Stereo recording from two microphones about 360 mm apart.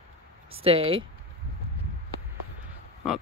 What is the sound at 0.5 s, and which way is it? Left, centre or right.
Speech, centre.